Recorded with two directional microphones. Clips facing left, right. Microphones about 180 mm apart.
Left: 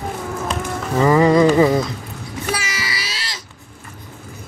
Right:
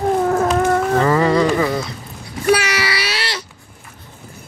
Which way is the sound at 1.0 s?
15° left (ahead or behind).